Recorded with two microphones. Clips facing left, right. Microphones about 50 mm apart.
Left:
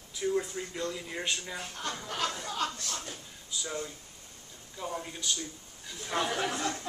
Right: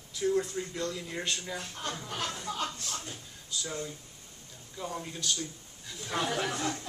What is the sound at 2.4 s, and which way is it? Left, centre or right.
Speech, left.